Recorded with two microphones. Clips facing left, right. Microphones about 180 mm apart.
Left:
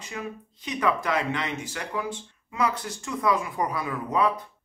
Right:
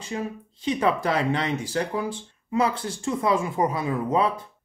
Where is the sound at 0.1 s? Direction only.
30° right (ahead or behind).